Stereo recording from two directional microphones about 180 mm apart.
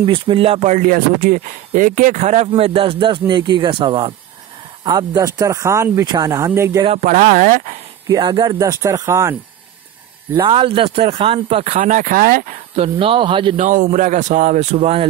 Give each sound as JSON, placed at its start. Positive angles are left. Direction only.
{"t": 0.0, "sound": "speech", "side_deg": -30}
{"t": 7.0, "sound": "speech", "side_deg": -45}
{"t": 8.1, "sound": "speech", "side_deg": -25}
{"t": 10.3, "sound": "speech", "side_deg": -30}
{"t": 12.7, "sound": "speech", "side_deg": -30}
{"t": 13.6, "sound": "speech", "side_deg": -45}